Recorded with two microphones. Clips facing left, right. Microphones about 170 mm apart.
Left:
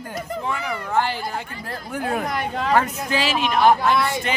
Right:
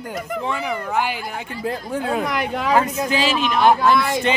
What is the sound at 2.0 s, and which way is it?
Speech, 90° right.